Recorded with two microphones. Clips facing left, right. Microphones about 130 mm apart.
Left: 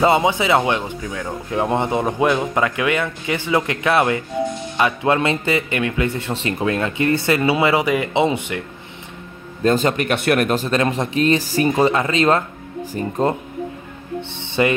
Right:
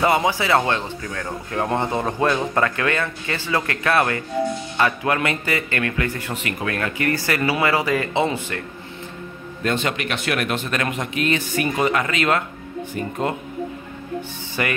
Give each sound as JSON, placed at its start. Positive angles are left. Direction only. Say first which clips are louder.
{"t": 0.0, "sound": "a man's voice", "louder": "left 3 dB", "side_deg": 20}
{"t": 9.6, "sound": "speech", "louder": "left 6 dB", "side_deg": 35}
{"t": 14.5, "sound": "speech", "louder": "left 7 dB", "side_deg": 25}